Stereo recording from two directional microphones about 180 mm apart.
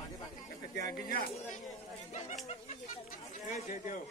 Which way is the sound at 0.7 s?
60° left (ahead or behind).